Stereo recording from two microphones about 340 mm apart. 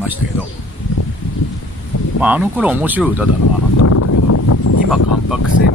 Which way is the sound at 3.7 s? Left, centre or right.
Left.